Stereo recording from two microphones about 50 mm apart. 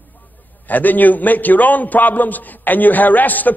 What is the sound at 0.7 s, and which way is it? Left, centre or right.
A man's voice, left.